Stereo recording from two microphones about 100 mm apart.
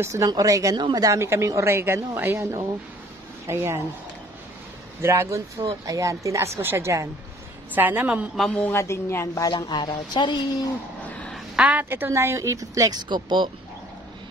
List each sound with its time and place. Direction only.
0.0 s a woman's voice: 30° right (ahead or behind)
5.0 s a woman's voice: 25° right (ahead or behind)
8.5 s speech: 25° left (ahead or behind)
9.5 s speech: 45° left (ahead or behind)
11.1 s a sound: 15° left (ahead or behind)
11.5 s a woman's voice: 15° right (ahead or behind); by 13.5 s 50° right (ahead or behind)